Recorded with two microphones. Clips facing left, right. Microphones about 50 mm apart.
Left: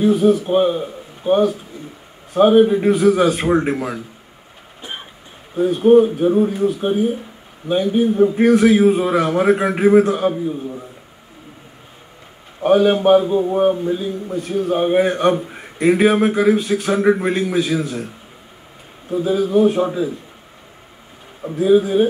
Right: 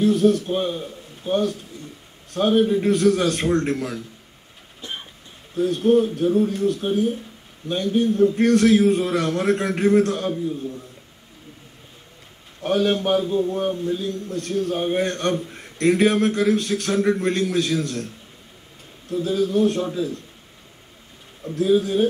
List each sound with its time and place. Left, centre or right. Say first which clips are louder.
0.0 s a man's voice: left 3 dB; centre
5.5 s a man's voice: left 6 dB; centre
12.6 s a man's voice: left 7 dB; centre
21.5 s a man's voice: left 5 dB; centre